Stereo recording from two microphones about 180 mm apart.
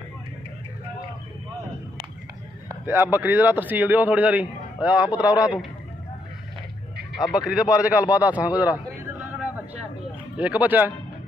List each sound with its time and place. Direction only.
2.7 s speech: 10° right (ahead or behind)
7.2 s speech: 20° left (ahead or behind)
7.4 s a man's voice: 5° right (ahead or behind)